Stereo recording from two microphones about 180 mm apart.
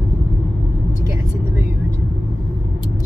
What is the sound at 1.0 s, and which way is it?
Vehicle, 15° right (ahead or behind).